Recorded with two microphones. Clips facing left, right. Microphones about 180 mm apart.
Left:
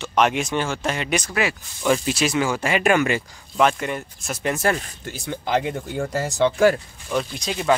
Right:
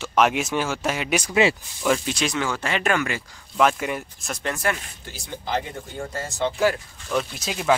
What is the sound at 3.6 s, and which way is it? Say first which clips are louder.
Speech: left 1 dB; 5° right (ahead or behind).